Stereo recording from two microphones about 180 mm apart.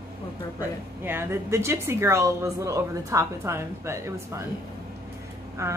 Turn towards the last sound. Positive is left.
turn(degrees=-15)  # may be behind; listen again after turning